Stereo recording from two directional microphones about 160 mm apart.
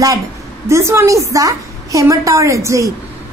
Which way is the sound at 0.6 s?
15° right (ahead or behind).